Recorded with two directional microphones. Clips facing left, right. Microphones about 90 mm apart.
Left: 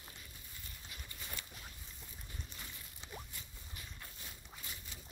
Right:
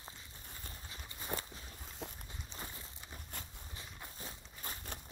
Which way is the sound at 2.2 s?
30° right (ahead or behind).